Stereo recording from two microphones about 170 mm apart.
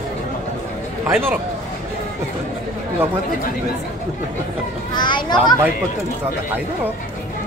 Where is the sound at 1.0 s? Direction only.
10° right (ahead or behind).